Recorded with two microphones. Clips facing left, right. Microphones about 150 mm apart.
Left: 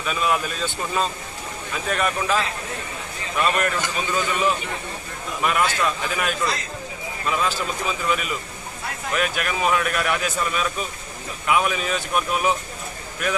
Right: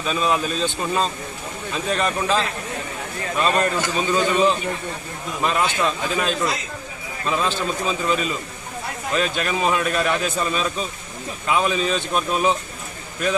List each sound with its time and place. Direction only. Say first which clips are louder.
0.0 s a man's voice: right 2 dB; 30° right (ahead or behind)
9.4 s a man's voice: right 1 dB; 25° right (ahead or behind)